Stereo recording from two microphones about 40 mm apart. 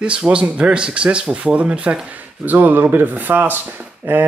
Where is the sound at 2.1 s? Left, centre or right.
Right.